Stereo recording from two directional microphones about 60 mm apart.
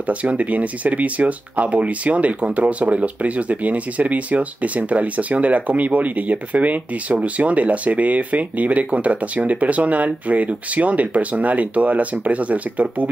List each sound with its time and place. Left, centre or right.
0.0 s speech: right